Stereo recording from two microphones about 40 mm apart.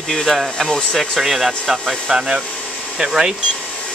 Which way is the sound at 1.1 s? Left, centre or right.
Centre.